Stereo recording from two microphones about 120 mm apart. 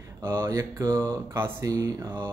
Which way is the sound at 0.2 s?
20° right (ahead or behind).